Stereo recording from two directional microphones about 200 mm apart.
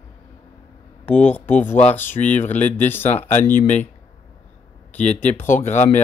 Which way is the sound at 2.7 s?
10° left (ahead or behind).